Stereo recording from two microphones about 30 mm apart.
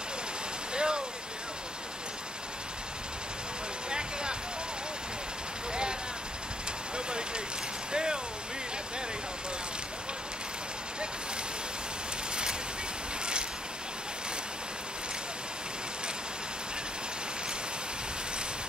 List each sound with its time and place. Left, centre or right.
0.7 s vehicle: right
3.9 s a sound: right
5.7 s vehicle: right
7.1 s a sound: right
7.9 s vehicle: right
13.2 s vehicle: right